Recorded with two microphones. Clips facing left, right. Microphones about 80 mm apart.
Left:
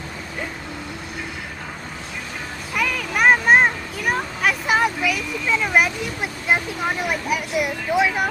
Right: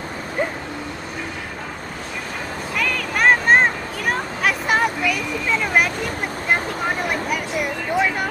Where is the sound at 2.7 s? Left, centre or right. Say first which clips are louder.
Left 1 dB; centre.